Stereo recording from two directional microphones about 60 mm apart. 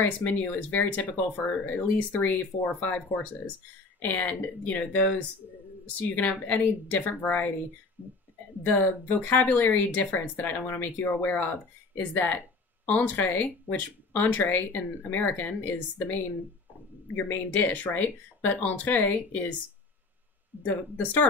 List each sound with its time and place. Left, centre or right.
0.0 s speech: left
8.6 s speech: left
20.6 s speech: left